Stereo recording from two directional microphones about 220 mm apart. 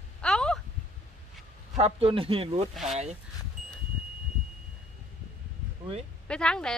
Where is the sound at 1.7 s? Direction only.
25° right (ahead or behind).